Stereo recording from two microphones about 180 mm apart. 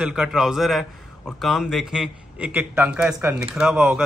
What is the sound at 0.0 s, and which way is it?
A man's voice, 5° right (ahead or behind).